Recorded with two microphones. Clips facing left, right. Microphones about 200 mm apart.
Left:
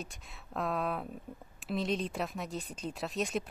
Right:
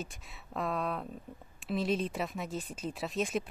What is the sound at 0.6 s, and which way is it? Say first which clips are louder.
Speech: even; centre (ahead or behind).